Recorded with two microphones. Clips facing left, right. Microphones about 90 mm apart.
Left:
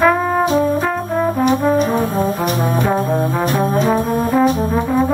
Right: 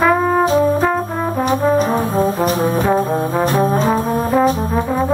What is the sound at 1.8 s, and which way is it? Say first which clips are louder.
Brass instrument: even; 35° right (ahead or behind).